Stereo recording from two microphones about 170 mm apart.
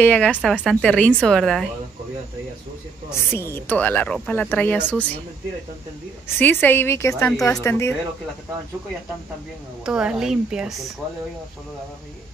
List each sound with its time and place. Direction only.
0.0 s speech: 10° left (ahead or behind)
3.5 s speech: 10° left (ahead or behind)
6.2 s speech: 10° left (ahead or behind)
9.8 s speech: 5° right (ahead or behind)